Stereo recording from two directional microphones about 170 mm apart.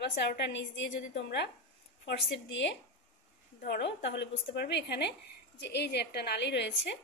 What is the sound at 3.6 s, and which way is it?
Speech, 80° left.